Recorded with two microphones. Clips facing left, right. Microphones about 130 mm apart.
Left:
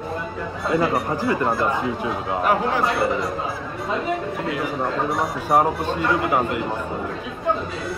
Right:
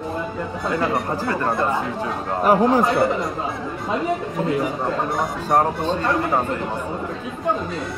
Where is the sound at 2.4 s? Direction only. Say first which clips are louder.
Right 5 dB; 40° right (ahead or behind).